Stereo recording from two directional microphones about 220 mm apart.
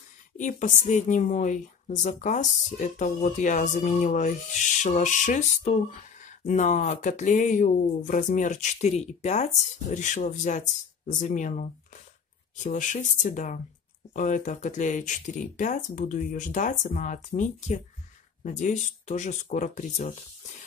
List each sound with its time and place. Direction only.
0.4 s speech: 35° left (ahead or behind)